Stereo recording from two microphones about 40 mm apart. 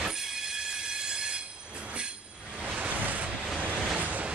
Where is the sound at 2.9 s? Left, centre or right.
Right.